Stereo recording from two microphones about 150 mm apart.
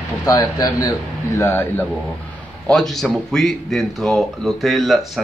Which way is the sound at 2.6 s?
Centre (ahead or behind).